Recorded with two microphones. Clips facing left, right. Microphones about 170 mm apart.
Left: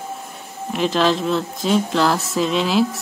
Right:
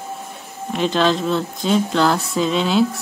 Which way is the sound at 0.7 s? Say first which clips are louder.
Even; centre (ahead or behind).